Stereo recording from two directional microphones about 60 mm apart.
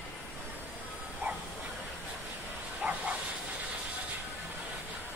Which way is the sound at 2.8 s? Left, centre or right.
Right.